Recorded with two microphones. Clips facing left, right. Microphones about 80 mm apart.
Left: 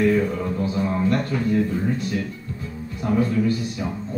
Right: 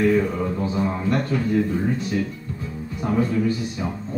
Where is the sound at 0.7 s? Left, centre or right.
Centre.